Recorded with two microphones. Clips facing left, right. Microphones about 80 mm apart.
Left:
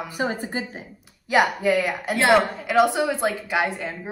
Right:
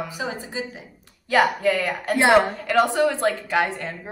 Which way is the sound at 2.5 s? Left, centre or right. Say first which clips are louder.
Left 1 dB; centre.